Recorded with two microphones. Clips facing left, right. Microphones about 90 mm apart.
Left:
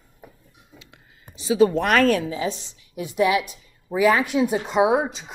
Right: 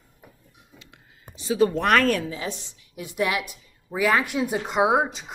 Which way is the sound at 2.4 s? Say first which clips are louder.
Left 5 dB; 30° left (ahead or behind).